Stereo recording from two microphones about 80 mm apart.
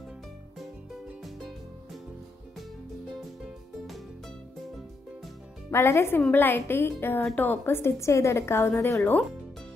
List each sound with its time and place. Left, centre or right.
3.4 s music: centre
5.7 s a woman's voice: left